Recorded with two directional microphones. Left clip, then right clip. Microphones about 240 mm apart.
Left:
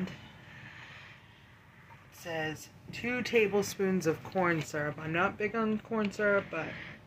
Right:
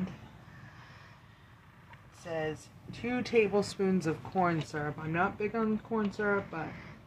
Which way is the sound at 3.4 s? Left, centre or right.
Right.